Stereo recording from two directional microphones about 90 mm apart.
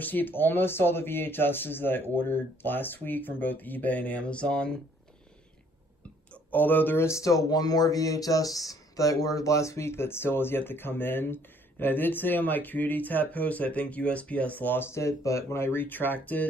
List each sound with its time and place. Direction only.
0.0 s a man's voice: 20° left (ahead or behind)
6.3 s a man's voice: 20° left (ahead or behind)
15.0 s a man's voice: 35° left (ahead or behind)